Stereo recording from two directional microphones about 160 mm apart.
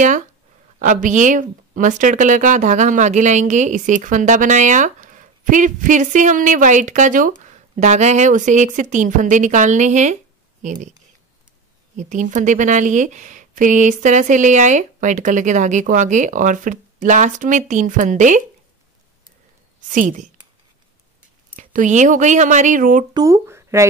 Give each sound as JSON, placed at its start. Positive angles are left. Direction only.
{"t": 0.7, "sound": "speech", "side_deg": -50}
{"t": 12.0, "sound": "speech", "side_deg": -50}
{"t": 19.9, "sound": "speech", "side_deg": -55}
{"t": 21.5, "sound": "speech", "side_deg": -50}
{"t": 23.1, "sound": "speech", "side_deg": -20}